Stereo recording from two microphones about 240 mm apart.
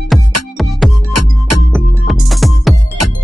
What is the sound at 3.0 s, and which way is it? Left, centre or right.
Music, right.